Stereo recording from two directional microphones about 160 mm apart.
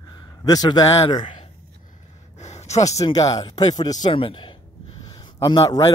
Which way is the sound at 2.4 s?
45° left (ahead or behind).